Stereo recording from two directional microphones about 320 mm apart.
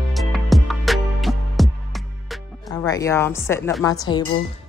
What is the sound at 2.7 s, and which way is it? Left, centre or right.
A woman's voice, centre.